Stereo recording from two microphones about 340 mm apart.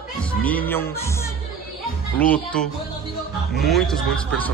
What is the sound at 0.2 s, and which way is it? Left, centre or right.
A man's voice, centre.